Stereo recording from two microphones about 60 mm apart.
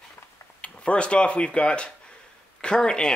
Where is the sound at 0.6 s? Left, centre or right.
Centre.